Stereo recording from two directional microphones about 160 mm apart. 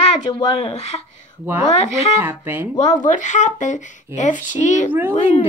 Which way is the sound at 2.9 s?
50° left (ahead or behind).